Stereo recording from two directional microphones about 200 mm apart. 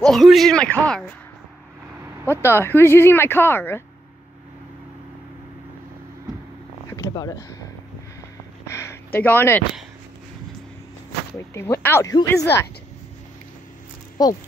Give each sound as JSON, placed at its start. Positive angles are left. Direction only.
{"t": 0.0, "sound": "a man's voice", "side_deg": 0}
{"t": 2.4, "sound": "speech", "side_deg": 10}
{"t": 6.9, "sound": "a sound", "side_deg": 15}
{"t": 11.3, "sound": "speech", "side_deg": 15}
{"t": 14.2, "sound": "speech", "side_deg": 20}